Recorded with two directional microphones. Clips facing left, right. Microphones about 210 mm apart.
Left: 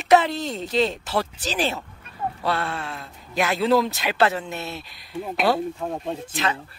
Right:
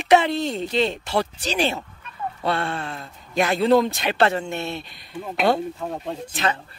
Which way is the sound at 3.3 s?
Centre (ahead or behind).